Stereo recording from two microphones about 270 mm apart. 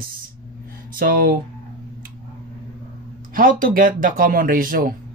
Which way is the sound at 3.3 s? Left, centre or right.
Right.